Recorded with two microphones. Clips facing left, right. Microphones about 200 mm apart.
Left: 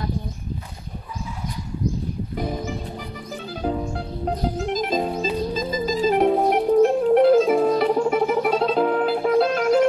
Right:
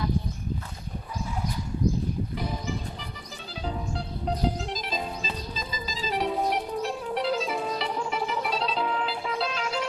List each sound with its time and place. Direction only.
2.3 s music: 50° left (ahead or behind)
4.6 s music: 50° left (ahead or behind)